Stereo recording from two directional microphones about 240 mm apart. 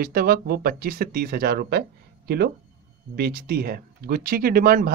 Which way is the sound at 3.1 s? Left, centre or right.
Right.